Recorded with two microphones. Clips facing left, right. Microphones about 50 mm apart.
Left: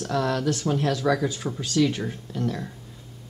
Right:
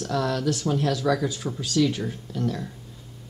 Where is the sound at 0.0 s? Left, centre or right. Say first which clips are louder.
Left 1 dB; left.